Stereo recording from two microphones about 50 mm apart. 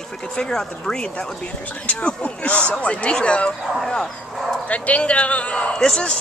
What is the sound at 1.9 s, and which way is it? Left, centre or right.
Speech, left.